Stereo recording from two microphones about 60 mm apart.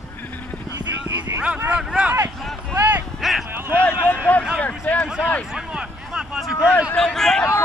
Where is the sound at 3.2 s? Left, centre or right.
Centre.